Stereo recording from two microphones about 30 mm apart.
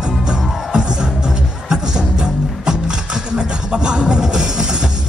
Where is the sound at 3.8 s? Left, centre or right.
Right.